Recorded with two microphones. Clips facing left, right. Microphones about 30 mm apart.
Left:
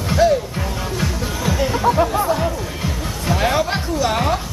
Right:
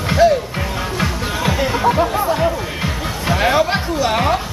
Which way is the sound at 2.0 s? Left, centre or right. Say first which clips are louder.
Right 1 dB; centre.